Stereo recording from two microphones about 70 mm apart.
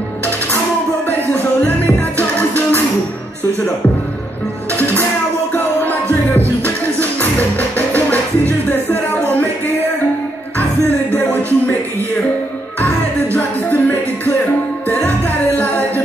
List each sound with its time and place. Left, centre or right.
1.6 s music: left
7.0 s music: left
11.1 s music: left
12.8 s music: left